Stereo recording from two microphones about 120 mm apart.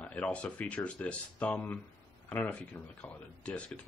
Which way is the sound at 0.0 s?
10° left (ahead or behind).